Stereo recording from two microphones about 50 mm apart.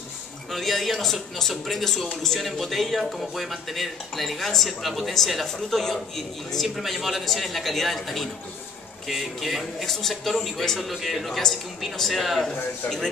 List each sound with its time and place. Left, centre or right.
0.5 s speech: centre